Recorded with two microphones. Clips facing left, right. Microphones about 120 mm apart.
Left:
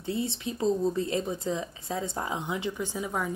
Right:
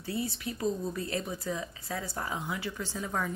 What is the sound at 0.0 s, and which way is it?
A woman's voice, 25° left (ahead or behind).